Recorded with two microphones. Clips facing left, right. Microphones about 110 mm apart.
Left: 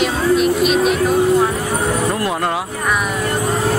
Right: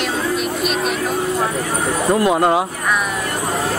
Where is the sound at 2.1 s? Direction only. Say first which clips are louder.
Right 5 dB; 20° right (ahead or behind).